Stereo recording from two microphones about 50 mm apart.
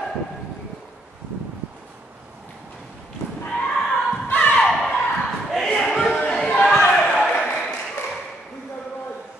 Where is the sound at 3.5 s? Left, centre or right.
Centre.